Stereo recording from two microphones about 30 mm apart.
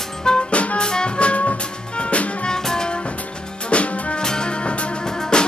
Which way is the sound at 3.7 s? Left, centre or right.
Left.